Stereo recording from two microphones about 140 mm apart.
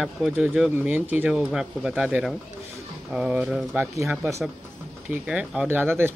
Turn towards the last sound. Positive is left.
turn(degrees=-15)  # may be behind; listen again after turning